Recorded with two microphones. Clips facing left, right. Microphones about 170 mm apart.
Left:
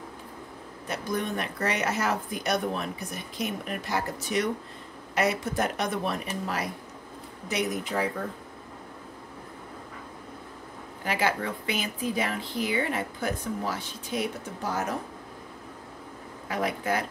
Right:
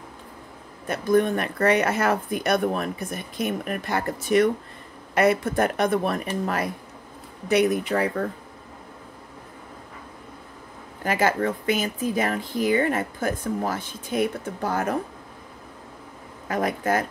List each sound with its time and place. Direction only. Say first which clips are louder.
0.8 s speech: right 10 dB; 50° right (ahead or behind)
11.1 s speech: right 5 dB; 45° right (ahead or behind)
16.4 s speech: right 4 dB; 45° right (ahead or behind)